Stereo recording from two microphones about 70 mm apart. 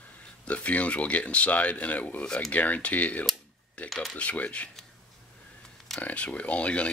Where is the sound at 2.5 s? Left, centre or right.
Left.